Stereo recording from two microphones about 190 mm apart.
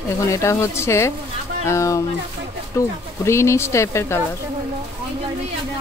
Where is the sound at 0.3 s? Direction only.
15° left (ahead or behind).